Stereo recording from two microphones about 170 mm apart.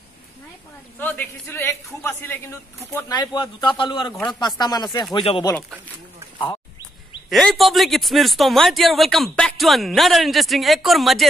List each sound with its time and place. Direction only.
0.9 s a man's voice: 10° left (ahead or behind)
3.0 s speech: 25° left (ahead or behind)
4.1 s a man's voice: 5° left (ahead or behind)
4.4 s speech: 25° left (ahead or behind)
6.3 s duck: 25° left (ahead or behind)
7.2 s a man's voice: centre (ahead or behind)